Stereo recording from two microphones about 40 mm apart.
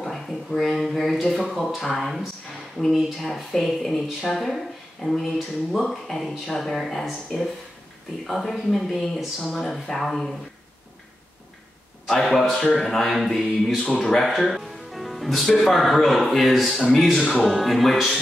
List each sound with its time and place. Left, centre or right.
0.0 s a sound: centre
0.6 s speech: centre
12.1 s speech: centre
13.8 s speech: centre
14.5 s music: centre
15.6 s speech: centre